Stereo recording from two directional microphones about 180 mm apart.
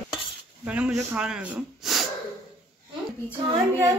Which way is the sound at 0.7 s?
5° right (ahead or behind).